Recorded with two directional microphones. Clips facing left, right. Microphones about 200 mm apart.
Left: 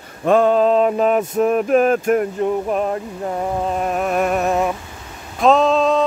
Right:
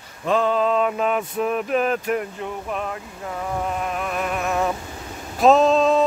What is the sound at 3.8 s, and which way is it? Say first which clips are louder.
Music: left 7 dB; 45° left (ahead or behind).